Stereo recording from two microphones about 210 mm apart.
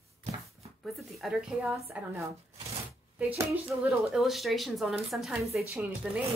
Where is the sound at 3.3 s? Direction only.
5° right (ahead or behind).